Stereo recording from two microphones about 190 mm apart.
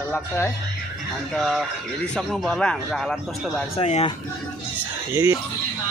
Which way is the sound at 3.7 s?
30° left (ahead or behind).